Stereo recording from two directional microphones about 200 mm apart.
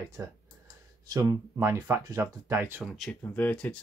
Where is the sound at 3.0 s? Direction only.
5° left (ahead or behind).